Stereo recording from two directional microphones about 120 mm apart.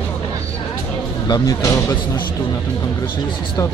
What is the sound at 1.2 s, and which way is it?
Speech, 35° left (ahead or behind).